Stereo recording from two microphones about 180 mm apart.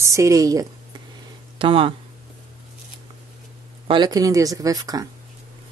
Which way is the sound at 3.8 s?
25° right (ahead or behind).